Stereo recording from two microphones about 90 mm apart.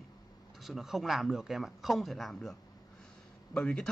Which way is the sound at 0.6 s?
Centre (ahead or behind).